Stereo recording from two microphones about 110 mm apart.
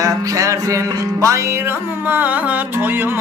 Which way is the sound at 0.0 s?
30° right (ahead or behind).